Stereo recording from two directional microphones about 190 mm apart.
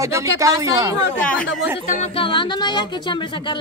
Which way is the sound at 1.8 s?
40° left (ahead or behind).